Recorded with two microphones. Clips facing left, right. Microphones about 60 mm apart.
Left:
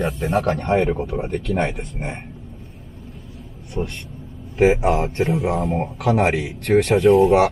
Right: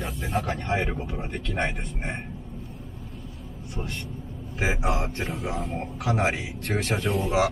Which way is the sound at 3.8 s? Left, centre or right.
Left.